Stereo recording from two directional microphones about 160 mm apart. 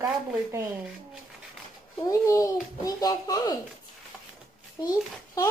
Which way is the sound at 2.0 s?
20° left (ahead or behind).